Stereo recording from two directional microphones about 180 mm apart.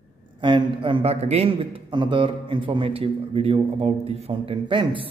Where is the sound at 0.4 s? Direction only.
25° right (ahead or behind).